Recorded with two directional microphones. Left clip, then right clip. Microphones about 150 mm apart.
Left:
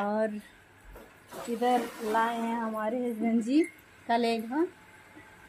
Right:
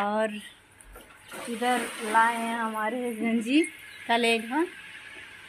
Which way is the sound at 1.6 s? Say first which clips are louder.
Even; 20° right (ahead or behind).